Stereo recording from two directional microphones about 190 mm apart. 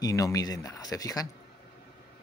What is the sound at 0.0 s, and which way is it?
Speech, 20° left (ahead or behind).